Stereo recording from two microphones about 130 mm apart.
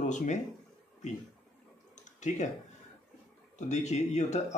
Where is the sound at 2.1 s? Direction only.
65° left (ahead or behind).